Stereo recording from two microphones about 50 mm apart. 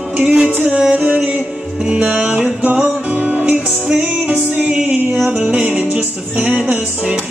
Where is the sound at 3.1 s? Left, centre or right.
Right.